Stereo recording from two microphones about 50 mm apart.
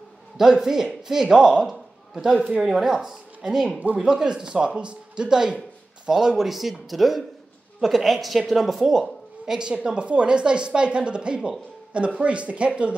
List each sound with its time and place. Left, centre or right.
0.4 s speech: centre